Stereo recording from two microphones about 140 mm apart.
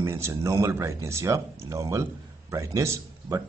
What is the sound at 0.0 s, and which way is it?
Speech, 20° right (ahead or behind).